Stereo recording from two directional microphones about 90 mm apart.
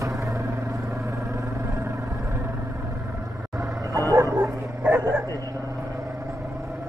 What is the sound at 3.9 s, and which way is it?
Bow-wow, 40° right (ahead or behind).